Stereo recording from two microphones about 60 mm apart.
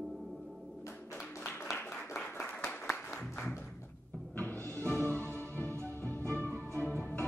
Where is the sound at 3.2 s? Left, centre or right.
Centre.